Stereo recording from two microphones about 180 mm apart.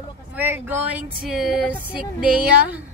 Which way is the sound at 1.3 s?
5° right (ahead or behind).